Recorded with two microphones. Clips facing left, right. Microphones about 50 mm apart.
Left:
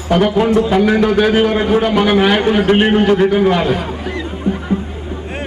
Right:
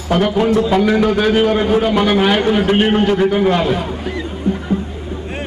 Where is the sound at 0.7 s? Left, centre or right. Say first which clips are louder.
Left 1 dB; centre.